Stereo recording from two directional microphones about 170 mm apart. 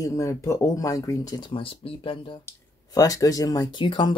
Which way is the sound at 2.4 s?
20° left (ahead or behind).